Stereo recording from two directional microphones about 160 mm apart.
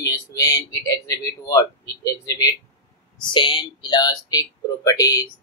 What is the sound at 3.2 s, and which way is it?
Speech, 30° left (ahead or behind).